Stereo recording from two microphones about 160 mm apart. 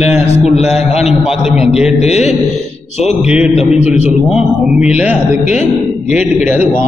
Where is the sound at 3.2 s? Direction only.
5° right (ahead or behind).